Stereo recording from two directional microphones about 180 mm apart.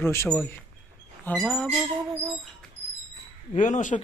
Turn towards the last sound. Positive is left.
turn(degrees=45)  # may be behind; listen again after turning